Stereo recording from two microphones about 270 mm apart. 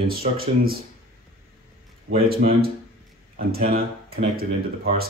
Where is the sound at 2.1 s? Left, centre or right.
Right.